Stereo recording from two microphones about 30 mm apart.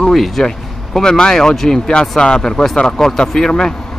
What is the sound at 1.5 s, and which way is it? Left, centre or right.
Speech, centre.